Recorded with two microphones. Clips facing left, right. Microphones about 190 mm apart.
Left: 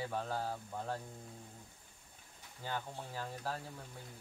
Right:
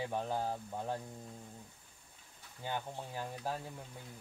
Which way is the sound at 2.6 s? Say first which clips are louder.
Right 2 dB; 15° right (ahead or behind).